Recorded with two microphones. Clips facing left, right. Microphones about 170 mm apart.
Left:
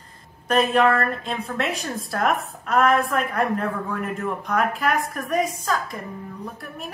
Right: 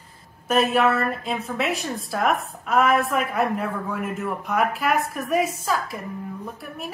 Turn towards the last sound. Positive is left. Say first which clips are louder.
# even
turn(degrees=-5)  # may be behind; listen again after turning